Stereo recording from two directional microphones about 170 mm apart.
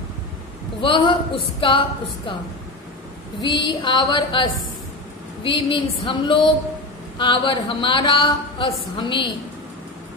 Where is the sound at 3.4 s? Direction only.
30° left (ahead or behind).